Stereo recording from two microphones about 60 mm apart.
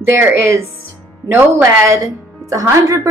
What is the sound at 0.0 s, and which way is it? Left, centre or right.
Speech, right.